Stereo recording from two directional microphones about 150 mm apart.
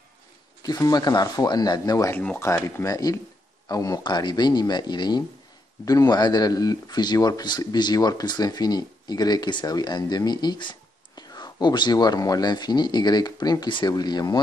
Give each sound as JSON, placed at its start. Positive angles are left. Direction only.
{"t": 0.6, "sound": "speech", "side_deg": 25}